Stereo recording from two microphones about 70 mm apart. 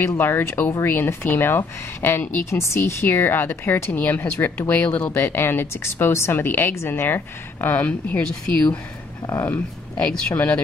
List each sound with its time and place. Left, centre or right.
0.2 s a woman's voice: left
5.1 s a woman's voice: left
9.2 s speech: left
10.3 s speech: left